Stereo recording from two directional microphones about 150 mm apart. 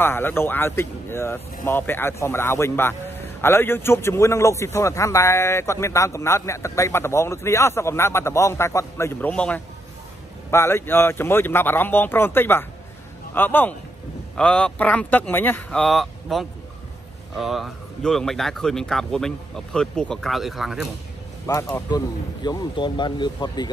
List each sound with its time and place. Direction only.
0.0 s speech: 15° left (ahead or behind); by 20.9 s centre (ahead or behind)
21.5 s speech: 20° left (ahead or behind)